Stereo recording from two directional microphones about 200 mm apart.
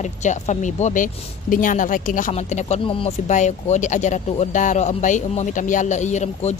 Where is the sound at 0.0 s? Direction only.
35° left (ahead or behind).